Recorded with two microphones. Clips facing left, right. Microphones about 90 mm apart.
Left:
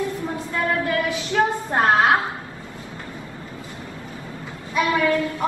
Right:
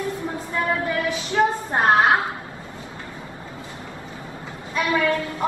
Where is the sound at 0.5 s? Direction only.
20° right (ahead or behind).